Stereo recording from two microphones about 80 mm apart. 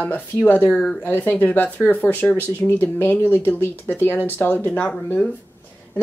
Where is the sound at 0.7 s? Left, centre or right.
Centre.